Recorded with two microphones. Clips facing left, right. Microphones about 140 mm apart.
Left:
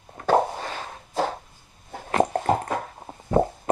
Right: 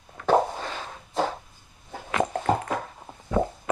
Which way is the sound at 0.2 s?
40° left (ahead or behind).